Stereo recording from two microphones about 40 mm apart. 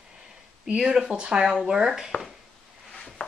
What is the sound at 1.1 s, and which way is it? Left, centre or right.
Speech, right.